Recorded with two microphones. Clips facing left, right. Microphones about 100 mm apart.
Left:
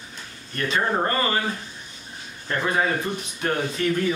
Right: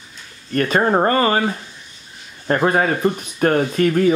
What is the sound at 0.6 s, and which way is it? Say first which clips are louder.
Speech: right 7 dB; 50° right (ahead or behind).